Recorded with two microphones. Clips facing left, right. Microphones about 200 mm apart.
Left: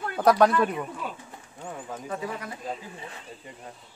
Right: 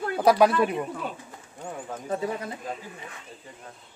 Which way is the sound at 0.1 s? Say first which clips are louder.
Even; 5° right (ahead or behind).